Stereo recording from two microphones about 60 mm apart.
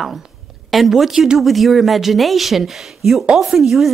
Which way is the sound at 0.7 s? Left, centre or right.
Centre.